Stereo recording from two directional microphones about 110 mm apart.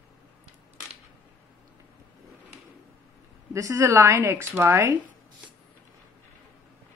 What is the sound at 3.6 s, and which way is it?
A woman's voice, 25° right (ahead or behind).